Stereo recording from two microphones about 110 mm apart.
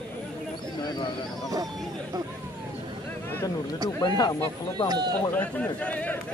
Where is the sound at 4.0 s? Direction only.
40° left (ahead or behind).